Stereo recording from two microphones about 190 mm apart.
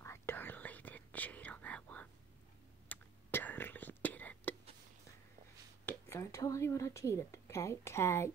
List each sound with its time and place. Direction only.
0.0 s whispering: 15° left (ahead or behind)
5.9 s speech: 15° left (ahead or behind)